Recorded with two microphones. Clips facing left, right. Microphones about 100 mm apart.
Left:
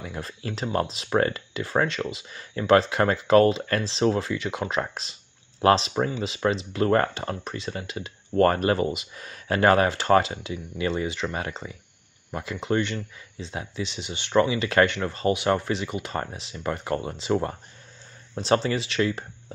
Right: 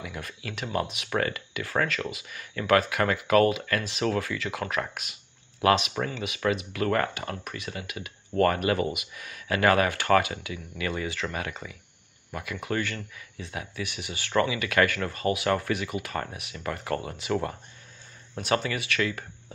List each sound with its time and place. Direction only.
0.0 s speech: 30° left (ahead or behind)